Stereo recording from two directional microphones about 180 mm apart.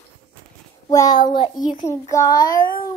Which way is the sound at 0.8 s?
20° left (ahead or behind).